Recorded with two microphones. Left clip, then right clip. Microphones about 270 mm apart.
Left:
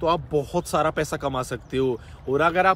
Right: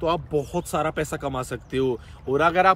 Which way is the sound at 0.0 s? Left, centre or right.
Centre.